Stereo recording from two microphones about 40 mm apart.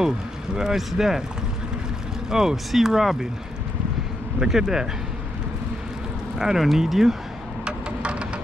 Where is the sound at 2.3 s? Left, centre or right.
Centre.